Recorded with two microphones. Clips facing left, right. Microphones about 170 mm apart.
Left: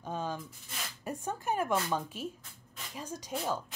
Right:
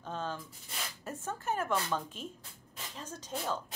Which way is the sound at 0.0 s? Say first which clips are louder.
Left 2 dB; 10° left (ahead or behind).